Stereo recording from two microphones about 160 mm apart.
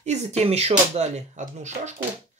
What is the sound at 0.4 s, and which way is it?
Speech, 40° right (ahead or behind).